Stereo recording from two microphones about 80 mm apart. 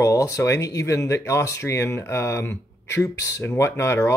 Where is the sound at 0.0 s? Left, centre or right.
Left.